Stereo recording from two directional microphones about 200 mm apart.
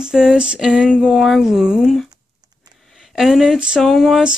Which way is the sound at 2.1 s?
20° right (ahead or behind).